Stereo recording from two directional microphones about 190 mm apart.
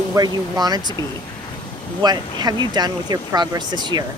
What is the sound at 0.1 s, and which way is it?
Speech, 20° right (ahead or behind).